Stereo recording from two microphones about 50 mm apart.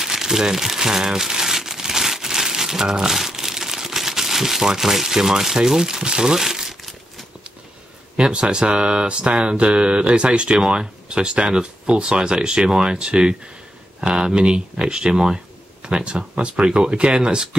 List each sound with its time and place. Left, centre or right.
0.0 s crumpling: centre
8.2 s speech: right